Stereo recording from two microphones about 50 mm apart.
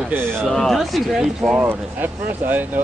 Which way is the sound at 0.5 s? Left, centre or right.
Centre.